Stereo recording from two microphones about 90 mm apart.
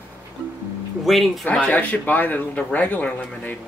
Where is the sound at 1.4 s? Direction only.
15° left (ahead or behind).